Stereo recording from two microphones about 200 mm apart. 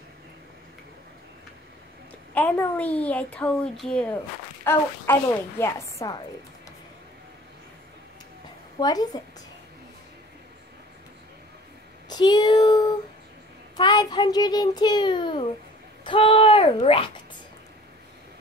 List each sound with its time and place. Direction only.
2.3 s speech: 10° left (ahead or behind)
8.7 s a child's voice: 20° left (ahead or behind)
12.1 s child singing: 20° left (ahead or behind)
13.7 s a child's voice: 20° left (ahead or behind)